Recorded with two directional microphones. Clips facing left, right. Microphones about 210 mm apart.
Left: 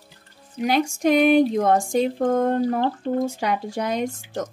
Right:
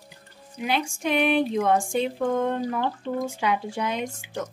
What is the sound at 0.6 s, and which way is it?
Speech, 40° left (ahead or behind).